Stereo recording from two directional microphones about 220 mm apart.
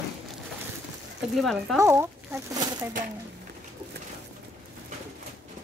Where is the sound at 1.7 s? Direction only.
10° right (ahead or behind).